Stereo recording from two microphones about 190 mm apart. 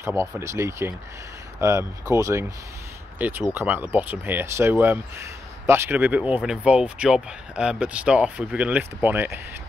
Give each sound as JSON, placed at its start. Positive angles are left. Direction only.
{"t": 0.0, "sound": "speech", "side_deg": -15}